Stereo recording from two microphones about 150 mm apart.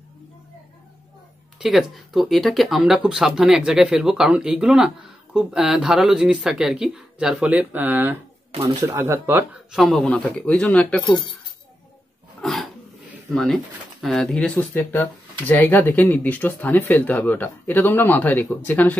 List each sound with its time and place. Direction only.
1.6 s speech: centre (ahead or behind)
9.7 s speech: centre (ahead or behind)
12.4 s a sound: centre (ahead or behind)
13.3 s speech: 5° left (ahead or behind)